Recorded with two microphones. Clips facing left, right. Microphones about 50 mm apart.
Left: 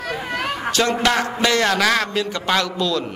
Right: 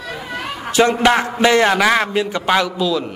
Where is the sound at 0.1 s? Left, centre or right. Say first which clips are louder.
Left 2 dB; left.